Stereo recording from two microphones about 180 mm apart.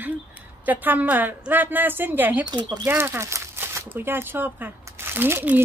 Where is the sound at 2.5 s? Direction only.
25° right (ahead or behind).